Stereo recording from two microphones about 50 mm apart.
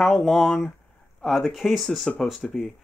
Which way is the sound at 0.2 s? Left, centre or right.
Centre.